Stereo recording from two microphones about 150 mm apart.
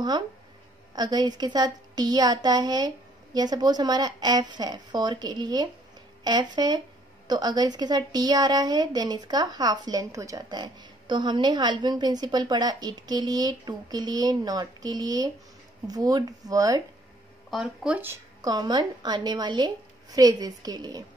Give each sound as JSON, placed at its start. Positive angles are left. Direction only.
{"t": 0.9, "sound": "a woman's voice", "side_deg": -25}
{"t": 17.5, "sound": "speech", "side_deg": -5}
{"t": 18.4, "sound": "a woman's voice", "side_deg": -30}